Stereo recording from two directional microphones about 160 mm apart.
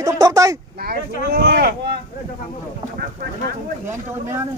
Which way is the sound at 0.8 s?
80° right.